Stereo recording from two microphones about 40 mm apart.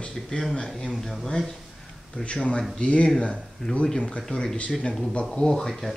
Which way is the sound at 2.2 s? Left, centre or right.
Left.